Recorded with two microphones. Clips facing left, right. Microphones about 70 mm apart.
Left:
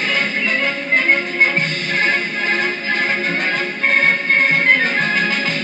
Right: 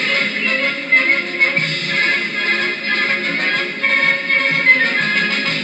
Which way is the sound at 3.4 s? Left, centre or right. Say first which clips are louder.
Even; right.